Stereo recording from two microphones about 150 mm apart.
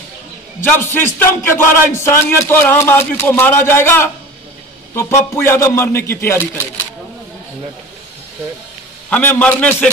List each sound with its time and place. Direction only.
0.6 s speech: 15° left (ahead or behind)
9.1 s speech: 10° left (ahead or behind)